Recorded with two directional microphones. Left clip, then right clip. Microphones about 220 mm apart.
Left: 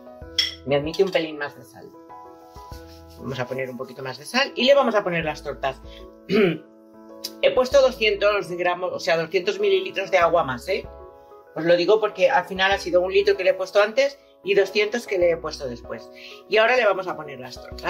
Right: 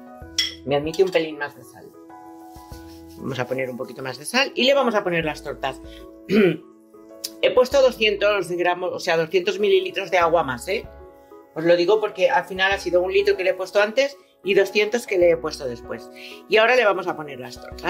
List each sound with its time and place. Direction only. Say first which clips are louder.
0.7 s speech: right 2 dB; 45° right (ahead or behind)
3.3 s speech: right 2 dB; 50° right (ahead or behind)